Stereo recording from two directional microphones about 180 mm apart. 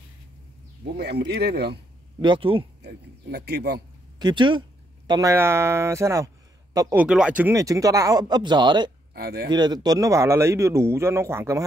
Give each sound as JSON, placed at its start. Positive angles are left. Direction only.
{"t": 0.9, "sound": "speech", "side_deg": -65}
{"t": 2.1, "sound": "speech", "side_deg": -25}
{"t": 2.8, "sound": "speech", "side_deg": -65}
{"t": 4.2, "sound": "speech", "side_deg": -25}
{"t": 7.0, "sound": "speech", "side_deg": -5}
{"t": 9.1, "sound": "speech", "side_deg": -60}
{"t": 9.5, "sound": "speech", "side_deg": -25}